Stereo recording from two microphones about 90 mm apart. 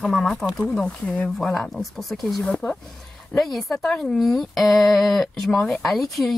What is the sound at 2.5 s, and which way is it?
Speech, 15° left (ahead or behind).